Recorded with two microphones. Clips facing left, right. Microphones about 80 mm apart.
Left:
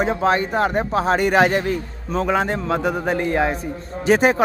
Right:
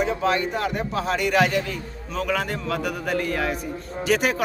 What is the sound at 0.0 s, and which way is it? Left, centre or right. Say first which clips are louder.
Speech: left 4 dB; left.